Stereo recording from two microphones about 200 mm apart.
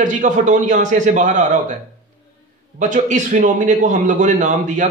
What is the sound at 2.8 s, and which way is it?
A man's voice, 40° right (ahead or behind).